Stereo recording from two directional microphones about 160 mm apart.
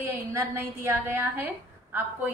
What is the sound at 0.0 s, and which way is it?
A woman's voice, 15° right (ahead or behind).